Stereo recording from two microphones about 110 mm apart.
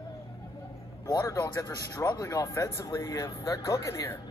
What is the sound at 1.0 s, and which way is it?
A man's voice, 30° left (ahead or behind).